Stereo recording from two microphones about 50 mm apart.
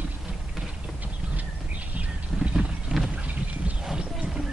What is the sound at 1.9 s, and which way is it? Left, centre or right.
Clip-clop, right.